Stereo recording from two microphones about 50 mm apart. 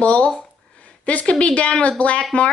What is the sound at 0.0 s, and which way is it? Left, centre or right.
A woman's voice, left.